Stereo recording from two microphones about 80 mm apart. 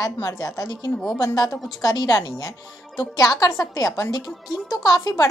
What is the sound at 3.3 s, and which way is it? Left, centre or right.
A woman's voice, left.